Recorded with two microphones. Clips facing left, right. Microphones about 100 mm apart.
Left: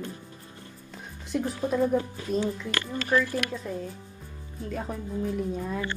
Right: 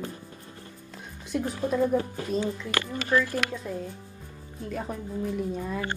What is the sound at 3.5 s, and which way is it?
Speech, centre (ahead or behind).